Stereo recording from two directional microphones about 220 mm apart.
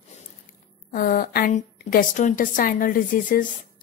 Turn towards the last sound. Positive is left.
turn(degrees=35)  # may be behind; listen again after turning